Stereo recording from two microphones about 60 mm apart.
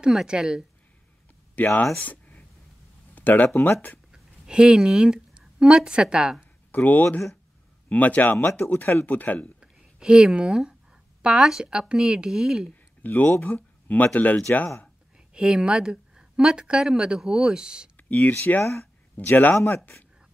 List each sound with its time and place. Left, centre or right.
0.0 s a woman's voice: centre
1.5 s speech: left
2.0 s a sound: left
4.1 s a sound: centre
5.6 s a woman's voice: centre
6.7 s a man's voice: left
9.6 s a sound: centre
11.9 s a woman's voice: centre
12.6 s a sound: left
13.4 s speech: left
15.1 s a woman's voice: centre
17.9 s speech: left
18.6 s speech: left
19.1 s a man's voice: left